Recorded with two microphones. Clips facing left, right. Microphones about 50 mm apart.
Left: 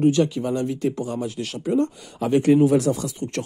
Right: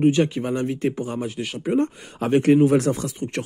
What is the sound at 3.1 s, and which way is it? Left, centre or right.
Speech, right.